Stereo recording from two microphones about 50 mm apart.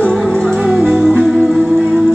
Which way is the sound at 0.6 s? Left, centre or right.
Centre.